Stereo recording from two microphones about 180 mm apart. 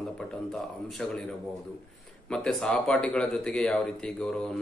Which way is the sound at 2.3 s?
5° left (ahead or behind).